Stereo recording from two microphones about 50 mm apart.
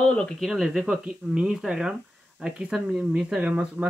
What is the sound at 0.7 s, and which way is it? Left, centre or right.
A man's voice, centre.